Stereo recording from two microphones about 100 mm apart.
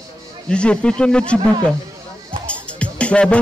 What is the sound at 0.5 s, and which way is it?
Speech, 10° left (ahead or behind).